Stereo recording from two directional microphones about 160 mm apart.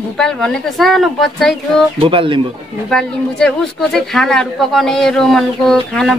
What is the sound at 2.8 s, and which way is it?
Speech, 5° left (ahead or behind).